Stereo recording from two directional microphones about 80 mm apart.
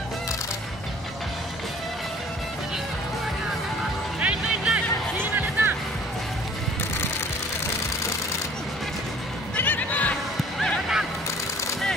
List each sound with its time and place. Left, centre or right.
4.2 s music: centre
9.6 s neigh: left